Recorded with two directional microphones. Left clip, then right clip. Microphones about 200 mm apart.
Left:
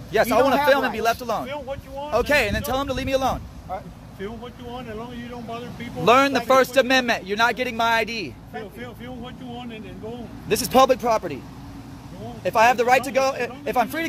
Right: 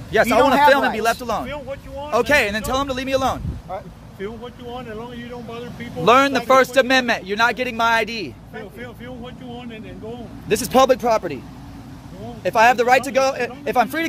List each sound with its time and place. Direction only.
0.1 s a man's voice: 15° right (ahead or behind)
1.4 s speech: centre (ahead or behind)
2.0 s a man's voice: 15° right (ahead or behind)
4.7 s speech: 25° right (ahead or behind)
6.0 s a man's voice: 15° right (ahead or behind)
12.4 s speech: 20° right (ahead or behind)